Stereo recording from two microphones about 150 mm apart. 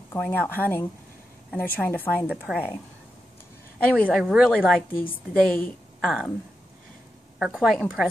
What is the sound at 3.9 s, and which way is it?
A woman's voice, 5° left (ahead or behind).